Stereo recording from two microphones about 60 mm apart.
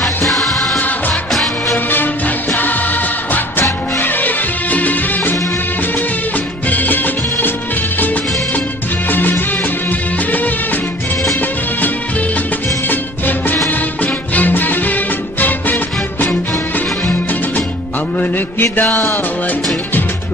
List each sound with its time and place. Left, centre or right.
0.0 s music: centre
0.7 s music: left
6.7 s music: left
9.1 s music: left
13.7 s music: left
18.2 s mantra: left